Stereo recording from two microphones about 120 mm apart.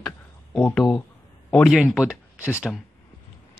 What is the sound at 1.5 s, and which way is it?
Speech, centre (ahead or behind).